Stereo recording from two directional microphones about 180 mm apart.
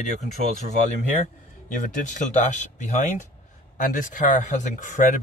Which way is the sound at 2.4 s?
40° left (ahead or behind).